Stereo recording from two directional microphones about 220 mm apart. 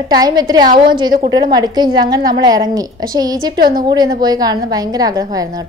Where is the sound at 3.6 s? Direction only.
40° right (ahead or behind).